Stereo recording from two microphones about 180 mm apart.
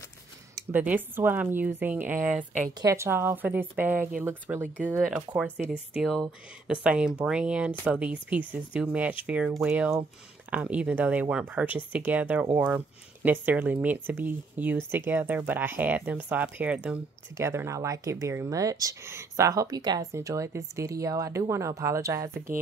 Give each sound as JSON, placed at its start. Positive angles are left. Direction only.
{"t": 0.6, "sound": "speech", "side_deg": -10}